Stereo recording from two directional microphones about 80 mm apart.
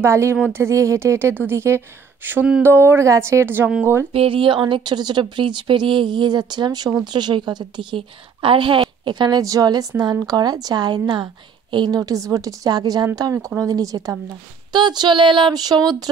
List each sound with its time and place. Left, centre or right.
0.0 s speech: right
4.3 s speech: right
7.1 s a woman's voice: right
9.0 s speech: right
9.4 s a woman's voice: right
10.2 s a sound: right
11.9 s a woman's voice: right
14.7 s a sound: right